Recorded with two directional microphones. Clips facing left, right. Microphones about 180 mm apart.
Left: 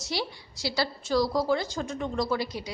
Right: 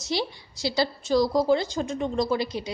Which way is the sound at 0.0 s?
20° right (ahead or behind).